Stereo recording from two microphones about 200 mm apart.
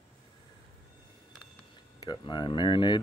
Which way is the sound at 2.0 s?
20° left (ahead or behind).